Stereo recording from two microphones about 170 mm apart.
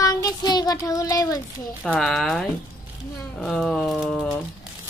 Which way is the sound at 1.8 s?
Centre (ahead or behind).